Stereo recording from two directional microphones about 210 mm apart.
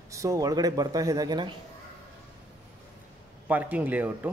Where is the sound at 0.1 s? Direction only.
15° right (ahead or behind).